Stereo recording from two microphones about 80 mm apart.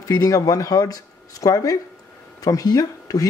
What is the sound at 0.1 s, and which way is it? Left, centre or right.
Speech, left.